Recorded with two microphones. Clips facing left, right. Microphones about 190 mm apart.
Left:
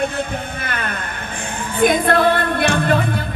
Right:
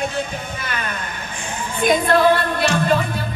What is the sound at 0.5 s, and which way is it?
Music, 55° left (ahead or behind).